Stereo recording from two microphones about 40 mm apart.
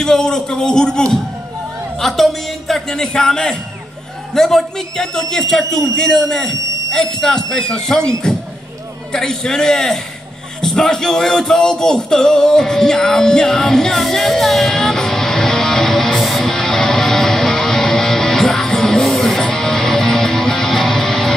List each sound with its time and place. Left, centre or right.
0.0 s a man's voice: centre
2.0 s music: centre
2.9 s a man's voice: centre
4.3 s a man's voice: centre
14.0 s music: centre
14.8 s music: centre
19.0 s music: centre
19.3 s music: centre